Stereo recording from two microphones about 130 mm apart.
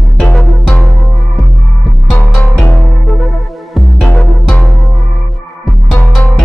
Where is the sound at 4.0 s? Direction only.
5° left (ahead or behind).